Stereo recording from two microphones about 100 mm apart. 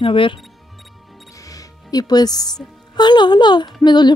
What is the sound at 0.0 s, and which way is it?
Speech, 60° left (ahead or behind).